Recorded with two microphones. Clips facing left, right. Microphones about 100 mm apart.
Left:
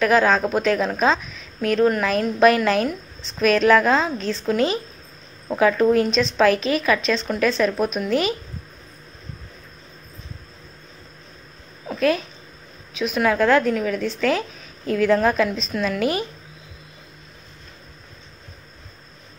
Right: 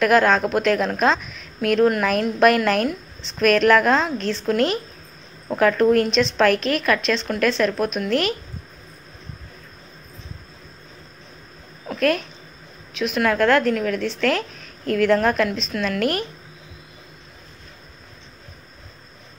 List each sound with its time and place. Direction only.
0.0 s speech: centre (ahead or behind)
11.9 s speech: centre (ahead or behind)